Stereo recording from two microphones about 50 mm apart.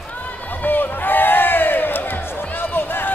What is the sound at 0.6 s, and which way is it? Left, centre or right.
Crowd, left.